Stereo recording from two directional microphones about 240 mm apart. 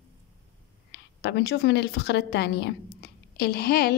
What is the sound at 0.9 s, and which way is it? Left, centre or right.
A woman's voice, left.